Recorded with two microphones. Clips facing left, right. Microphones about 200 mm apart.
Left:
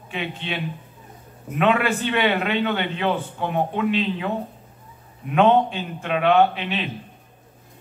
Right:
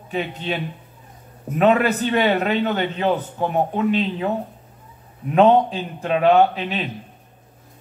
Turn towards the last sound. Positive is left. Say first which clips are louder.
# right 1 dB
turn(degrees=-40)  # may be behind; listen again after turning